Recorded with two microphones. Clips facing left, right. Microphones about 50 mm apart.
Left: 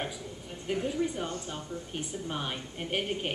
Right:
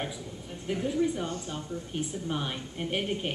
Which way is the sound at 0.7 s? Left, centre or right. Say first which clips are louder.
Right 2 dB; centre.